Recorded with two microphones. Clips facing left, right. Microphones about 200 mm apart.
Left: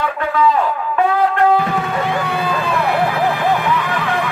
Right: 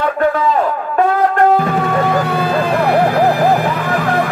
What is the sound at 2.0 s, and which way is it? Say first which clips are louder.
Vehicle: right 4 dB; 40° right (ahead or behind).